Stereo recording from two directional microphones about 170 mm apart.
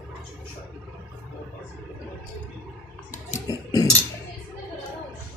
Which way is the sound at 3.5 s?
25° left (ahead or behind).